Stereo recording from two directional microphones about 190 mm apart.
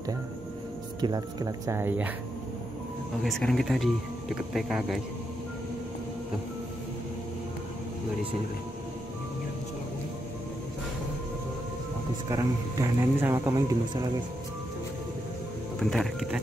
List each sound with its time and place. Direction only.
1.0 s speech: 20° right (ahead or behind)
3.2 s speech: centre (ahead or behind)
12.3 s speech: 15° right (ahead or behind)
15.8 s speech: centre (ahead or behind)